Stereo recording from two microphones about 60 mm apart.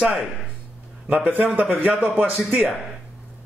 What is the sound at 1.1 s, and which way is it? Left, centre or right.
A man's voice, right.